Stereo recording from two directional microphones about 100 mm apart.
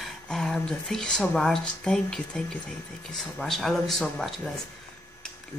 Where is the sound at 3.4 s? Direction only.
Centre (ahead or behind).